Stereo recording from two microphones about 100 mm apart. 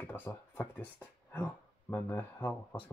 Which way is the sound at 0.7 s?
20° left (ahead or behind).